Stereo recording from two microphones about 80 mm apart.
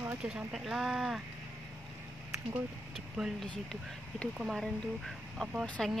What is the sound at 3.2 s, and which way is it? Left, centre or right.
Speech, centre.